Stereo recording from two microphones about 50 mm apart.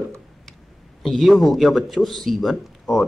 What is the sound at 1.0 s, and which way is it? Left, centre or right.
A man's voice, centre.